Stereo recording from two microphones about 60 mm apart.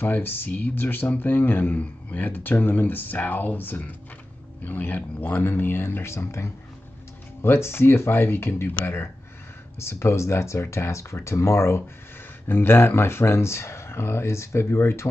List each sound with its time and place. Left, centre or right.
0.0 s speech: left